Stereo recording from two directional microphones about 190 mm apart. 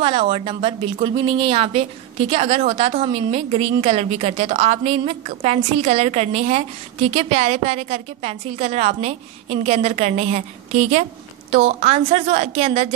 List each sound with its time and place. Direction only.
0.0 s speech: 25° right (ahead or behind)